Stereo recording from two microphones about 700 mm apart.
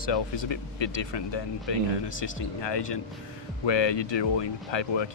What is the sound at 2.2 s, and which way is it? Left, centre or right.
Speech, left.